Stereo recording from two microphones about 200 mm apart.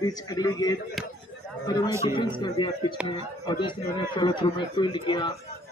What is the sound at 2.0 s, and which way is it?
Speech, 25° left (ahead or behind).